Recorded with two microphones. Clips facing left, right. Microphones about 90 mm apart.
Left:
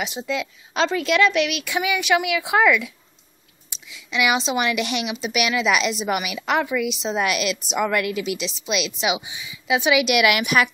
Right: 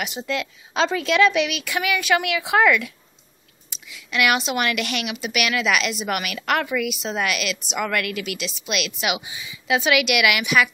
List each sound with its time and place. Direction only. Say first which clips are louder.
0.2 s a woman's voice: even; 5° left (ahead or behind)
1.6 s a woman's voice: left 1 dB; 10° left (ahead or behind)
10.0 s a woman's voice: left 2 dB; 40° left (ahead or behind)